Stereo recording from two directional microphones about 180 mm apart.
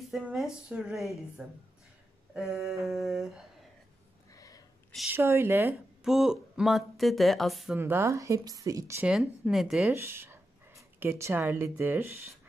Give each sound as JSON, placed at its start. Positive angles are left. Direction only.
{"t": 0.1, "sound": "speech", "side_deg": -5}
{"t": 4.3, "sound": "a sound", "side_deg": 20}
{"t": 5.1, "sound": "speech", "side_deg": -15}
{"t": 6.0, "sound": "speech", "side_deg": -5}
{"t": 7.8, "sound": "speech", "side_deg": -15}
{"t": 9.1, "sound": "speech", "side_deg": -5}
{"t": 9.9, "sound": "dog", "side_deg": -15}
{"t": 11.0, "sound": "speech", "side_deg": -15}